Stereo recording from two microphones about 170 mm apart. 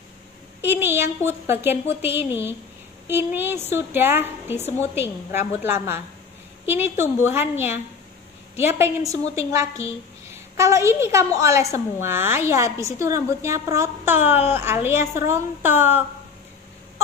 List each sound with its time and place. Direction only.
0.6 s a woman's voice: 15° right (ahead or behind)
9.2 s a woman's voice: 35° left (ahead or behind)
10.3 s a woman's voice: 15° right (ahead or behind)